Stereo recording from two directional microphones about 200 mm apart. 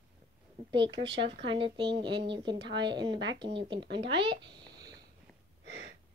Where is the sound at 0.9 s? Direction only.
60° right (ahead or behind).